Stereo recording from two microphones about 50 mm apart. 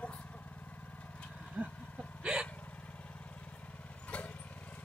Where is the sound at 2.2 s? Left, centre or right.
Centre.